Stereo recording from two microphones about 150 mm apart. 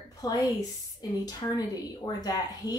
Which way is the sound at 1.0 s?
25° left (ahead or behind).